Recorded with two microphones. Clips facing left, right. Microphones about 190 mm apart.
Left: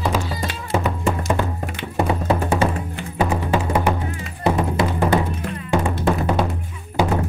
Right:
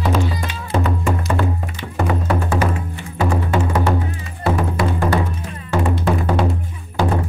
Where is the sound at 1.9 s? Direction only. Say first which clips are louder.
Even; 20° left (ahead or behind).